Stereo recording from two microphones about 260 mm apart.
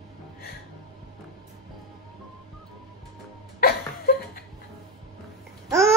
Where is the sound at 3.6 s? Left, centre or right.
Left.